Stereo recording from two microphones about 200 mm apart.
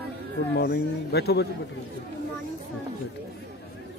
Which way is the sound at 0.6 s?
55° left (ahead or behind).